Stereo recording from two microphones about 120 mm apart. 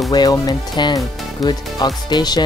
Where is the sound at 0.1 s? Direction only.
35° left (ahead or behind).